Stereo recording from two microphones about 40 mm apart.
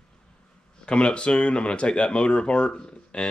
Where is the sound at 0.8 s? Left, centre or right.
Left.